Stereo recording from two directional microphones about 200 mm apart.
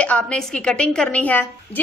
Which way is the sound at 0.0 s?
5° left (ahead or behind).